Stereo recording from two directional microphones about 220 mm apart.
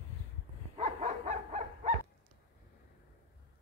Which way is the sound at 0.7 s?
30° right (ahead or behind).